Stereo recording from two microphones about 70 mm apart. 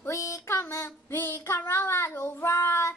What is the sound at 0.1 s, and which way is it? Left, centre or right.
Child singing, left.